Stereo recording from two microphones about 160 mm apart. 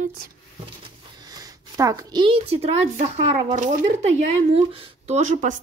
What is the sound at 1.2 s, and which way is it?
A woman's voice, 25° right (ahead or behind).